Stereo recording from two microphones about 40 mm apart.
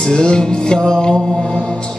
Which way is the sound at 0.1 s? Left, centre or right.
Left.